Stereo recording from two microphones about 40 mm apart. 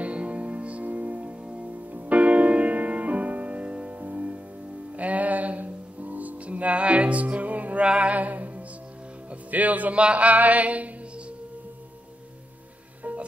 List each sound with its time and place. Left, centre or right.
0.0 s music: right
1.4 s music: right
1.7 s music: right
3.9 s music: right
7.8 s music: right